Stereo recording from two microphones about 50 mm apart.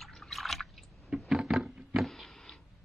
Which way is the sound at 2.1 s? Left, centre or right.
Centre.